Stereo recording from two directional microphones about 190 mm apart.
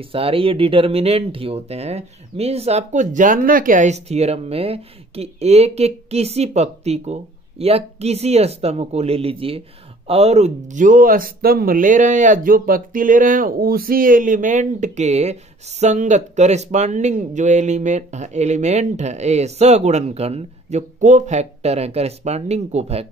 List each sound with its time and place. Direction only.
0.0 s speech: 30° right (ahead or behind)